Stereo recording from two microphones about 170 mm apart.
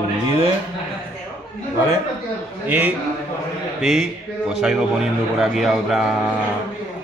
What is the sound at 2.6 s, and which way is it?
Speech, 10° right (ahead or behind).